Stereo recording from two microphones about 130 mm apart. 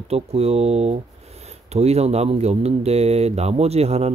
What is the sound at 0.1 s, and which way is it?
Speech, 55° right (ahead or behind).